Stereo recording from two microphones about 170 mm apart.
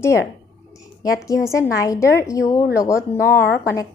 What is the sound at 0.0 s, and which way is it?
A woman's voice, 15° left (ahead or behind).